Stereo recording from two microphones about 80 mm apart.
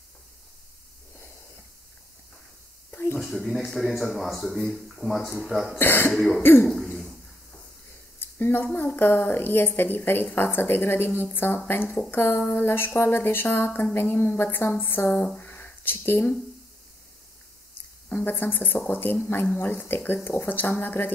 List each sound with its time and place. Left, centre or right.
2.9 s a sound: left
3.2 s speech: centre
5.8 s a woman's voice: left
6.1 s speech: centre
6.4 s a woman's voice: left
6.7 s cough: centre
8.2 s a sound: left
8.6 s a woman's voice: left
15.1 s speech: centre
15.4 s a sound: left
18.0 s a woman's voice: left